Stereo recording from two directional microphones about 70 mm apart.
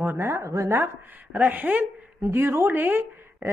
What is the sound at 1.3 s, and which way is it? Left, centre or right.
A woman's voice, right.